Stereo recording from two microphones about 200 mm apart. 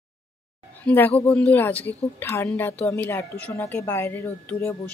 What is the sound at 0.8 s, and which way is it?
Speech, 10° left (ahead or behind).